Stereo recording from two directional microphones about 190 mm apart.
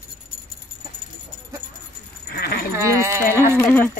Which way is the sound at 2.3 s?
55° left (ahead or behind).